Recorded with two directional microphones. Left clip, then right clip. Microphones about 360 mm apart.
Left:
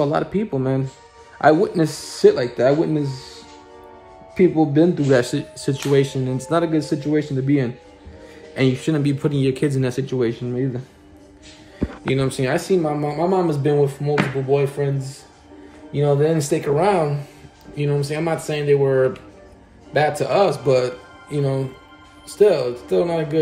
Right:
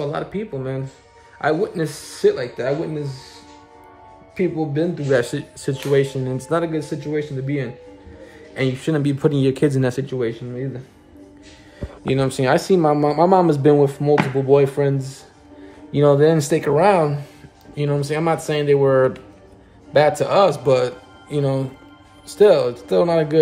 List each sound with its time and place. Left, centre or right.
0.0 s speech: centre
4.4 s speech: centre
11.8 s speech: centre